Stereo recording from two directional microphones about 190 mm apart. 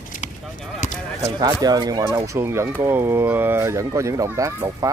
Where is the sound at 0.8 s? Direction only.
40° left (ahead or behind).